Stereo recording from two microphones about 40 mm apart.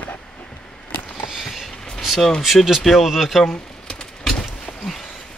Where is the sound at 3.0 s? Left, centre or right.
Centre.